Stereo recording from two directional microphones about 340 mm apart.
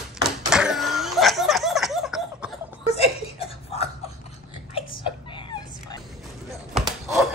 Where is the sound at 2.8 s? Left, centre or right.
Centre.